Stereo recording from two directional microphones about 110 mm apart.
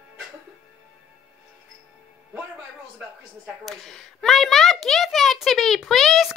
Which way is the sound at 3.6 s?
Centre (ahead or behind).